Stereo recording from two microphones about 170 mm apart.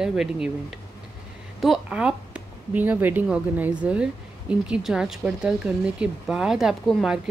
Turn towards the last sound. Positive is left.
turn(degrees=-5)  # may be behind; listen again after turning